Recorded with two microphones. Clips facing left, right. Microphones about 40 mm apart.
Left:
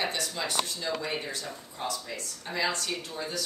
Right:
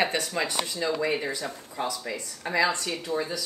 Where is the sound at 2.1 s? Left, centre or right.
Right.